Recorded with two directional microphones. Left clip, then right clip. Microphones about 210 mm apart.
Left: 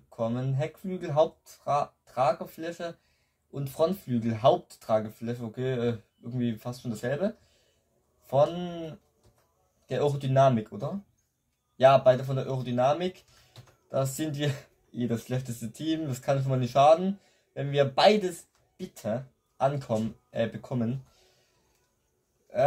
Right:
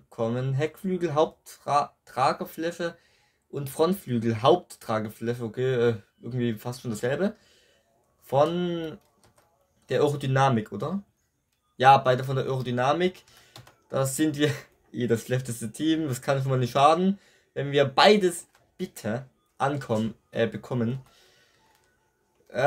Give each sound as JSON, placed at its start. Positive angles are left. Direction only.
{"t": 0.1, "sound": "speech", "side_deg": -40}
{"t": 9.8, "sound": "speech", "side_deg": -40}